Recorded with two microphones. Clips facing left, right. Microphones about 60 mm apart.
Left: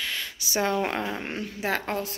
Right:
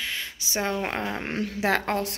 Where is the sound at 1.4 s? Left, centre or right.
Right.